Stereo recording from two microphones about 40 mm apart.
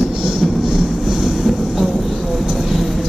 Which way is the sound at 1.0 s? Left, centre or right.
Centre.